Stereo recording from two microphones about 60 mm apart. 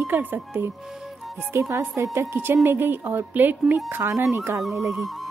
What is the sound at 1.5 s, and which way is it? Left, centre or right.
A woman's voice, right.